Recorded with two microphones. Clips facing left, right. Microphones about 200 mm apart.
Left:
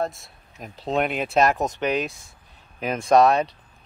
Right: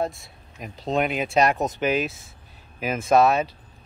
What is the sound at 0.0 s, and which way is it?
Speech, centre (ahead or behind).